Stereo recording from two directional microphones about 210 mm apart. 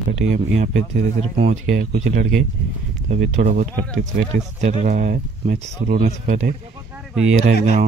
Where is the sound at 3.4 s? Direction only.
40° right (ahead or behind).